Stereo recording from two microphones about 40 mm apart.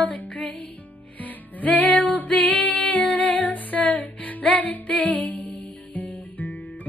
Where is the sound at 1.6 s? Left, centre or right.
Left.